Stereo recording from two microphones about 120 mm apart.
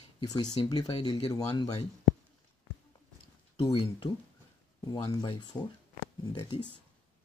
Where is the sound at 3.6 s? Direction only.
45° left (ahead or behind).